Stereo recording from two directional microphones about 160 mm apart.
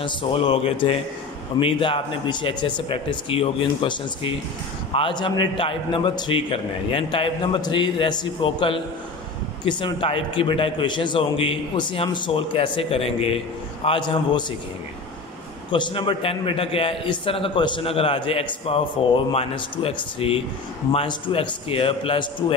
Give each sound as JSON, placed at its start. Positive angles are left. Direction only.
{"t": 0.0, "sound": "a man's voice", "side_deg": 35}
{"t": 15.7, "sound": "a man's voice", "side_deg": 30}